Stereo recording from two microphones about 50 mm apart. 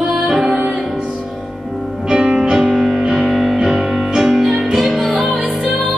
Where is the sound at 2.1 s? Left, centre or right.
Centre.